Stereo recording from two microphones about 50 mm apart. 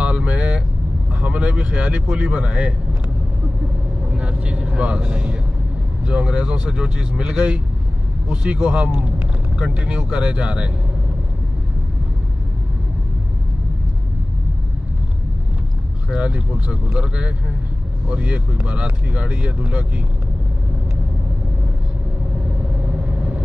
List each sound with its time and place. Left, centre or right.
0.0 s vehicle: right
1.2 s speech: right
4.1 s speech: right
16.1 s speech: right
23.0 s vehicle: right